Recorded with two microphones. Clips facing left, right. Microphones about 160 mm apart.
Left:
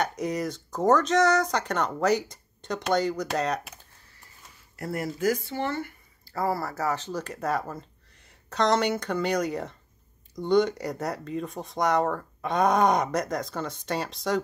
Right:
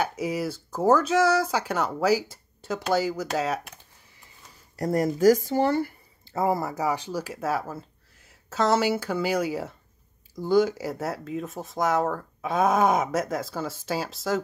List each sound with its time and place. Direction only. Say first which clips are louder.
0.0 s speech: right 1 dB; 5° right (ahead or behind)
4.7 s speech: right 7 dB; 40° right (ahead or behind)
6.3 s speech: right 3 dB; 20° right (ahead or behind); by 14.4 s centre (ahead or behind)